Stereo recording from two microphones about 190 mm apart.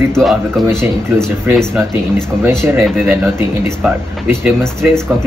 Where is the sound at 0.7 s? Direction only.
15° right (ahead or behind).